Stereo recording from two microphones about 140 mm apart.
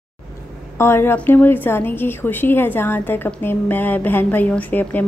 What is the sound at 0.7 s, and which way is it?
A woman's voice, 15° left (ahead or behind).